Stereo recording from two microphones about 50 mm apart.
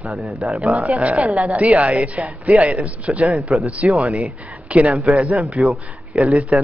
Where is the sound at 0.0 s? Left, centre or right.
Centre.